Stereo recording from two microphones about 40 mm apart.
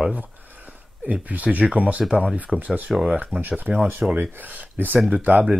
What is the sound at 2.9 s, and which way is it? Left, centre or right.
Speech, centre.